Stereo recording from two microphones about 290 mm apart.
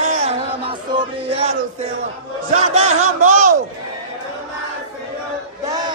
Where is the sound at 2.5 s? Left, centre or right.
Right.